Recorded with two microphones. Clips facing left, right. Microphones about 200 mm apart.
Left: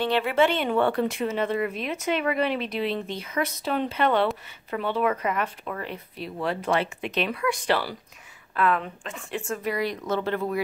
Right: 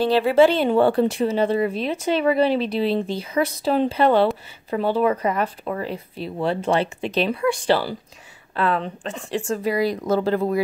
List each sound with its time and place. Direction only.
0.0 s speech: 35° right (ahead or behind)